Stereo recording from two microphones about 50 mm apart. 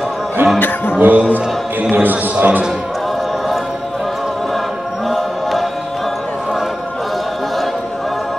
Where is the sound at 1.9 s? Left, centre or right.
Right.